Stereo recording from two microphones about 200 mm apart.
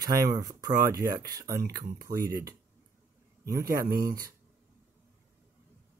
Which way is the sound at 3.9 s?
45° right (ahead or behind).